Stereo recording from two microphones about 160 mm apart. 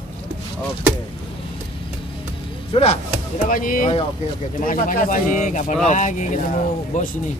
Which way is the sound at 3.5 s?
60° left (ahead or behind).